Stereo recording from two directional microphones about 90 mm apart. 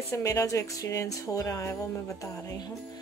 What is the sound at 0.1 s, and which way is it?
Speech, 35° left (ahead or behind).